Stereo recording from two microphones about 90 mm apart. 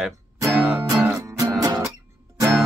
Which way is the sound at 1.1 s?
35° right (ahead or behind).